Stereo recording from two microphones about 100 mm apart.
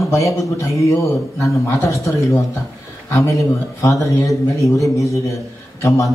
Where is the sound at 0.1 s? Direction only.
30° left (ahead or behind).